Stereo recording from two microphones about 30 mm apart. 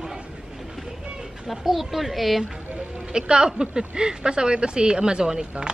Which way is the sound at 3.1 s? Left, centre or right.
Right.